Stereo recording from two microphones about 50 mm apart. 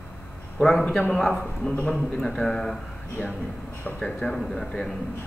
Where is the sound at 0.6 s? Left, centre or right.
Centre.